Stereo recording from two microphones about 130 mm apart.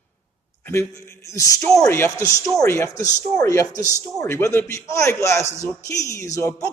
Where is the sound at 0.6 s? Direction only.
20° left (ahead or behind).